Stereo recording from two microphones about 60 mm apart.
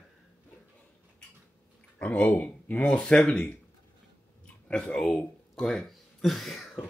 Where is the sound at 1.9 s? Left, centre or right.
Left.